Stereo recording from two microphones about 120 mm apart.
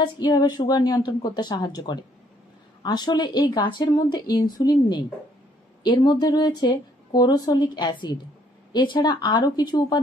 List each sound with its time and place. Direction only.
0.0 s speech: 35° left (ahead or behind)